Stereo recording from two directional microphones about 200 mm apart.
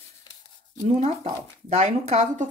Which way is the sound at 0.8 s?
35° right (ahead or behind).